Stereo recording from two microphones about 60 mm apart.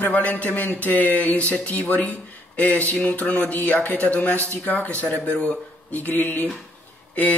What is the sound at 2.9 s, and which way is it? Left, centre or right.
Speech, centre.